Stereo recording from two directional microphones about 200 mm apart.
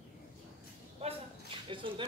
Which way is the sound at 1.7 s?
25° right (ahead or behind).